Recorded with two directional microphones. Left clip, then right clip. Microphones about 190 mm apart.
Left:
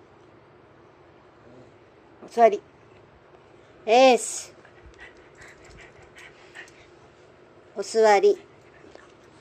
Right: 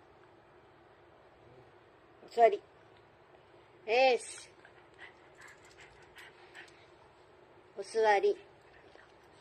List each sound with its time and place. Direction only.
2.3 s speech: 10° left (ahead or behind)
3.8 s a woman's voice: 20° left (ahead or behind)
5.8 s pant: 5° left (ahead or behind)
7.7 s a woman's voice: 20° left (ahead or behind)